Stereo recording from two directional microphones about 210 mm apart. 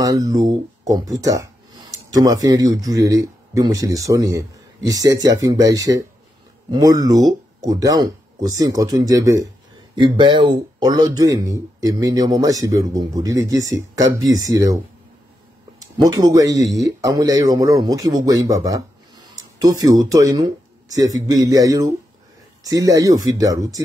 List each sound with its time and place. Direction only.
0.0 s speech: 15° right (ahead or behind)
16.1 s speech: 15° right (ahead or behind)